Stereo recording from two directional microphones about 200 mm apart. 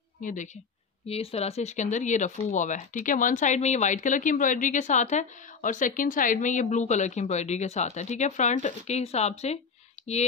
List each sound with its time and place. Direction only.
0.2 s speech: 40° left (ahead or behind)
1.0 s speech: 30° left (ahead or behind)
10.0 s a sound: 30° left (ahead or behind)